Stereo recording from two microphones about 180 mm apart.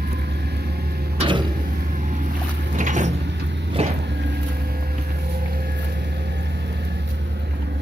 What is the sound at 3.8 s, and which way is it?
Vehicle, 35° right (ahead or behind).